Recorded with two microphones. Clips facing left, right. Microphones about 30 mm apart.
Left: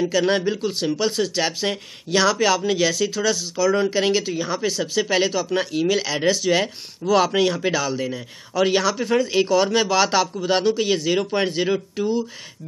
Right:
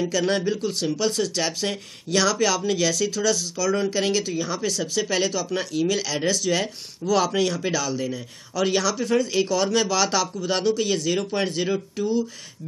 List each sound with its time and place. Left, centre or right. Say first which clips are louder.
0.0 s speech: left 3 dB; centre